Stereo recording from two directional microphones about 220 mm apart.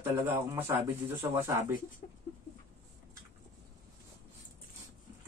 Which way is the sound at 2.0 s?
30° left (ahead or behind).